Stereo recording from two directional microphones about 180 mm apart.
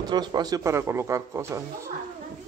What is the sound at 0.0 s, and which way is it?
A man's voice, 25° right (ahead or behind).